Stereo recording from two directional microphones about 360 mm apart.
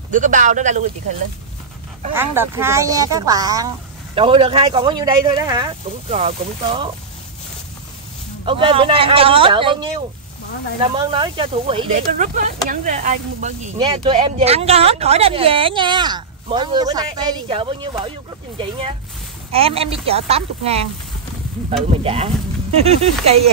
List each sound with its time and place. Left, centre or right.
0.1 s speech: right
2.1 s speech: centre
8.5 s speech: centre
19.5 s speech: centre
21.8 s speech: centre